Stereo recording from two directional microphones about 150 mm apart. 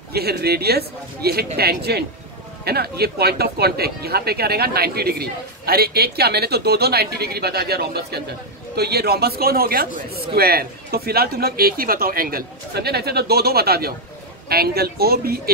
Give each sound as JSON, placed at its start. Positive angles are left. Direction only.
{"t": 0.1, "sound": "speech", "side_deg": -90}